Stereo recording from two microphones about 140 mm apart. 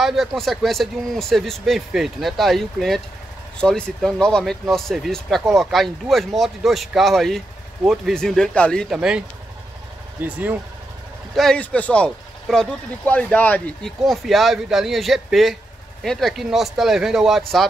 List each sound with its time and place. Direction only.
0.0 s speech: centre (ahead or behind)
10.2 s speech: 10° right (ahead or behind)
11.3 s speech: 5° left (ahead or behind)
14.0 s speech: centre (ahead or behind)